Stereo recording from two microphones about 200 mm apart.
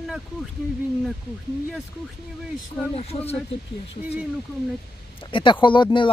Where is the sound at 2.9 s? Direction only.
30° left (ahead or behind).